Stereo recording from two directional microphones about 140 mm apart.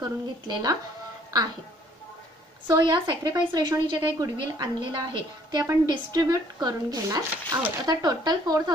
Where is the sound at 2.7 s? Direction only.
30° right (ahead or behind).